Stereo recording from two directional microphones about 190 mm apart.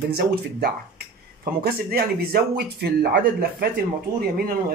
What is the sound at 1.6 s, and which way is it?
Speech, 55° right (ahead or behind).